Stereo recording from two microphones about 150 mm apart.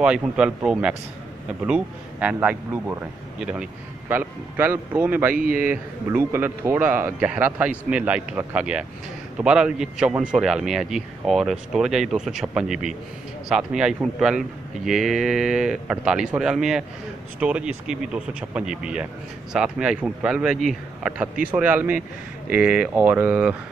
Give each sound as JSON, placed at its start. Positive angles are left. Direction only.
{"t": 0.0, "sound": "a man's voice", "side_deg": -5}
{"t": 5.3, "sound": "a man's voice", "side_deg": -70}
{"t": 5.6, "sound": "a man's voice", "side_deg": -15}